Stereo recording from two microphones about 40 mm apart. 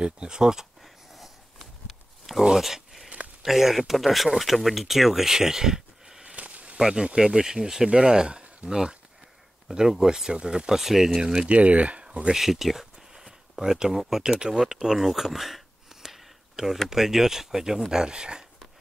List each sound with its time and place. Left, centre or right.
0.0 s speech: right
0.8 s a sound: centre
2.4 s speech: centre
6.2 s a sound: right
6.8 s speech: right
10.8 s speech: centre
11.4 s speech: right
12.4 s speech: centre
13.1 s a sound: centre
16.9 s speech: centre